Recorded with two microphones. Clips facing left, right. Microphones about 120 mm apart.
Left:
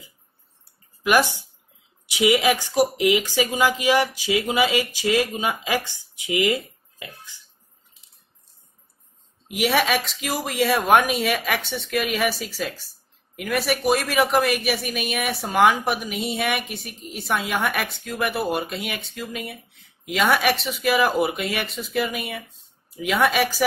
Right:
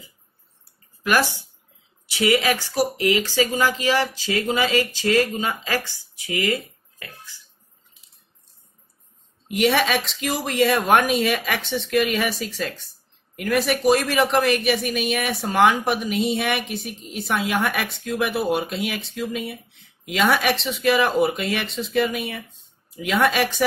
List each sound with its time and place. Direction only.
1.0 s speech: 15° left (ahead or behind)
9.5 s speech: centre (ahead or behind)